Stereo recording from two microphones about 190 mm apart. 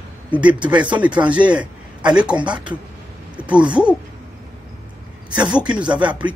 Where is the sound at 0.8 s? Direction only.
5° right (ahead or behind).